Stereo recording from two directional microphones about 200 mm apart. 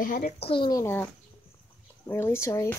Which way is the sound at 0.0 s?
40° left (ahead or behind).